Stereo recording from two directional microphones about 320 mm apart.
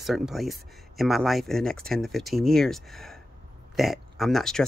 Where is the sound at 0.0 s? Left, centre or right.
Centre.